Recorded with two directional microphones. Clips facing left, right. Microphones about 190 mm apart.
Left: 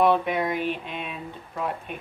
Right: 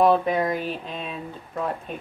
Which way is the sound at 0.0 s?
35° right (ahead or behind).